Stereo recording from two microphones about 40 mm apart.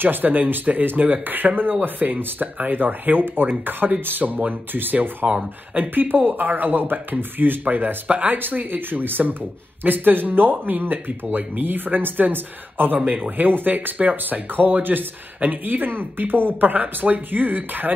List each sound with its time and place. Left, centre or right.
0.0 s speech: right
8.4 s speech: right